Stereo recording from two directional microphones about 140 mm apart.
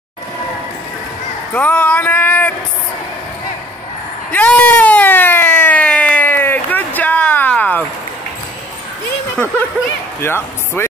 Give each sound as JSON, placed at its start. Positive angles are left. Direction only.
{"t": 1.5, "sound": "speech", "side_deg": 10}
{"t": 4.3, "sound": "emergency vehicle", "side_deg": 10}
{"t": 10.2, "sound": "speech", "side_deg": 15}